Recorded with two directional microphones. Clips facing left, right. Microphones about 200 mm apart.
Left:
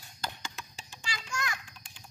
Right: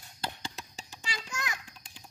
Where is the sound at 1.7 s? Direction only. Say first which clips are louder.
Right 1 dB; 35° right (ahead or behind).